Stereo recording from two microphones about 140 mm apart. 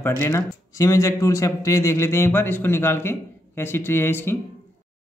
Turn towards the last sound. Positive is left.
turn(degrees=15)  # may be behind; listen again after turning